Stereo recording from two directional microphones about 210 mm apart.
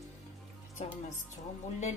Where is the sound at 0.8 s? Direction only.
30° left (ahead or behind).